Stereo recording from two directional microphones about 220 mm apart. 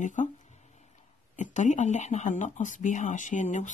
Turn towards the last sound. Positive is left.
turn(degrees=35)  # may be behind; listen again after turning